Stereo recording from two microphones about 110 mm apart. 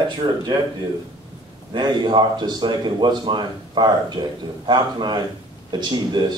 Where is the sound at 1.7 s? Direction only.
45° right (ahead or behind).